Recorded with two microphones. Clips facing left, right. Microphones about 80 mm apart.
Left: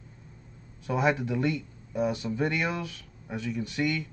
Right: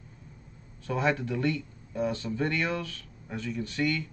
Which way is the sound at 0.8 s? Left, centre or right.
Centre.